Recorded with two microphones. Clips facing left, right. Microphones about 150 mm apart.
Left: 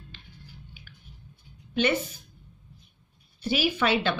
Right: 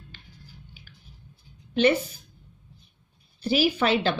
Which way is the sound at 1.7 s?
35° right (ahead or behind).